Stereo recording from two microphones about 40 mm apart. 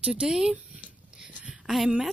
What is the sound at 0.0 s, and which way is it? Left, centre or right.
Speech, right.